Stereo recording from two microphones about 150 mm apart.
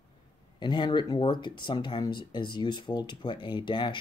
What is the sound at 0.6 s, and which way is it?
Speech, 30° left (ahead or behind).